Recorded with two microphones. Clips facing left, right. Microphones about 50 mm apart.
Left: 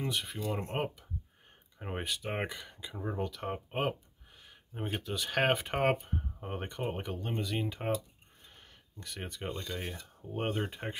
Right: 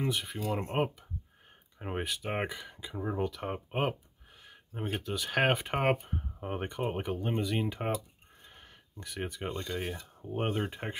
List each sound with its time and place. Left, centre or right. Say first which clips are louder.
0.0 s speech: right 2 dB; centre
9.0 s speech: right 3 dB; centre